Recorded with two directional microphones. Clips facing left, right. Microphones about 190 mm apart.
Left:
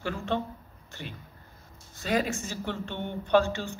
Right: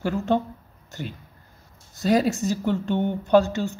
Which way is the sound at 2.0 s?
40° right (ahead or behind).